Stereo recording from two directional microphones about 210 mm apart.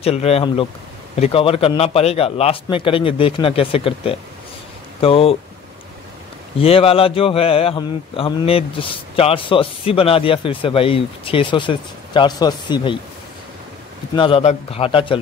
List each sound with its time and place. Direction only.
0.0 s speech: 30° left (ahead or behind)
6.6 s speech: 25° left (ahead or behind)
14.1 s speech: 25° left (ahead or behind)